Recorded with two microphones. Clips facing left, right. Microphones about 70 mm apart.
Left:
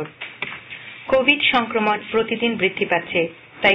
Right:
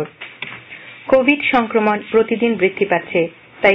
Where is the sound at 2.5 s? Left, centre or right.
Right.